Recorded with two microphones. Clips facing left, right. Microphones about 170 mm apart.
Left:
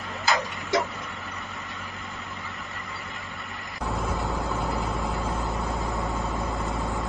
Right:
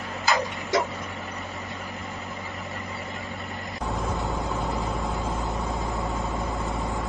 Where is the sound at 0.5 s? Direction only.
Centre (ahead or behind).